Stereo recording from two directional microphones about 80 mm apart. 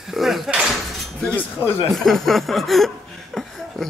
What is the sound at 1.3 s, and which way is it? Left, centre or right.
Speech, left.